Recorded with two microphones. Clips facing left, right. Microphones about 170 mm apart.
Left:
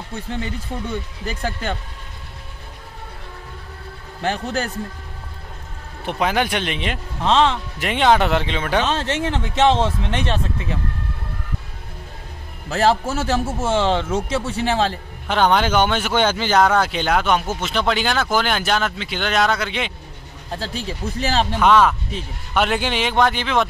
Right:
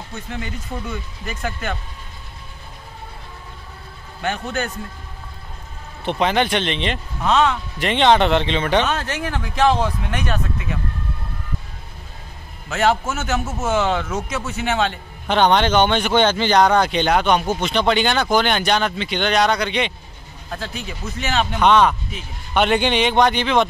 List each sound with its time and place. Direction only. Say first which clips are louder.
0.3 s speech: left 2 dB; 30° left (ahead or behind)
4.2 s speech: left 1 dB; 35° left (ahead or behind)
6.0 s speech: right 2 dB; 10° left (ahead or behind)
7.2 s speech: left 1 dB; 30° left (ahead or behind)
7.8 s speech: right 1 dB; 5° left (ahead or behind)
8.8 s speech: left 2 dB; 25° left (ahead or behind)
12.6 s speech: left 1 dB; 35° left (ahead or behind)
15.2 s speech: right 1 dB; 5° left (ahead or behind)
20.5 s speech: left 2 dB; 30° left (ahead or behind)
21.5 s speech: right 1 dB; 5° left (ahead or behind)